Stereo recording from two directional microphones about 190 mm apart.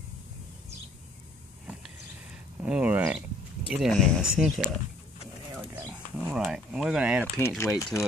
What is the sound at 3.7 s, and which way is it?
Speech, 5° right (ahead or behind).